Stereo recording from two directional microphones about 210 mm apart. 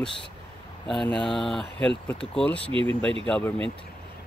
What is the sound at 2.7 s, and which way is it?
Speech, 25° right (ahead or behind).